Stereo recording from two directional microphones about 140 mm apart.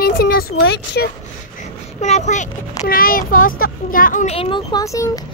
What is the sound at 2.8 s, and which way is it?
A child's voice, 90° left.